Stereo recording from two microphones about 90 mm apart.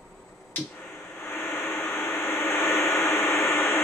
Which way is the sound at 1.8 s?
30° left (ahead or behind).